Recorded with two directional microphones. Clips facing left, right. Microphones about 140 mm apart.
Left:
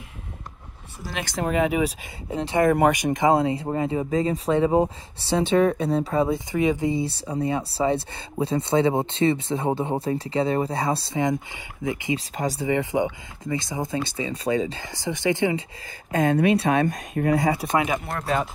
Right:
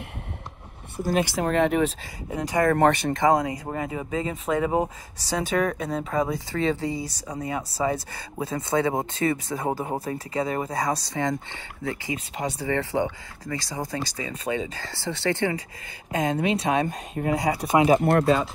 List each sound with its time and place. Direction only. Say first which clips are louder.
0.9 s speech: right 9 dB; 50° right (ahead or behind)
1.2 s speech: left 3 dB; 5° right (ahead or behind)
2.3 s speech: left 2 dB; 25° left (ahead or behind)
2.7 s speech: left 1 dB; 10° left (ahead or behind)
3.3 s speech: left 4 dB; 30° left (ahead or behind)
14.8 s speech: left 2 dB; 15° left (ahead or behind)
16.1 s speech: left 4 dB; 55° left (ahead or behind)
17.7 s speech: right 9 dB; 35° right (ahead or behind)